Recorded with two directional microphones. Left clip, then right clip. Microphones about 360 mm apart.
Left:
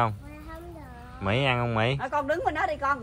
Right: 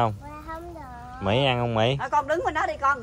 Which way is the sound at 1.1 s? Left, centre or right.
Centre.